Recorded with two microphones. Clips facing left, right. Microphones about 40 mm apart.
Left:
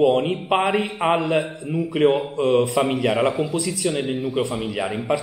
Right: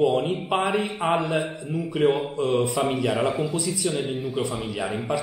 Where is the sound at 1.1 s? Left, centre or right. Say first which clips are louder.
Left 3 dB; centre.